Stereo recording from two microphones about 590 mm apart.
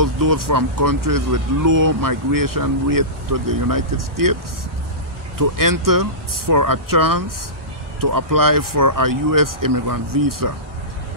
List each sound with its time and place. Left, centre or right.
0.0 s speech: right
5.6 s speech: right